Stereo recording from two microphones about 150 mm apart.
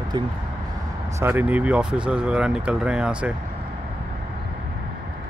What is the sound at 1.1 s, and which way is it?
Speech, 10° right (ahead or behind).